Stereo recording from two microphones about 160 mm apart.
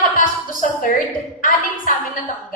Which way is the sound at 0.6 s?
50° left (ahead or behind).